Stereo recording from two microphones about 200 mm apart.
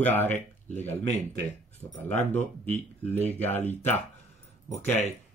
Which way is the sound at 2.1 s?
10° left (ahead or behind).